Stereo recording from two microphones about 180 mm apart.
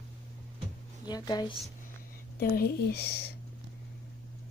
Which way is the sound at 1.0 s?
25° left (ahead or behind).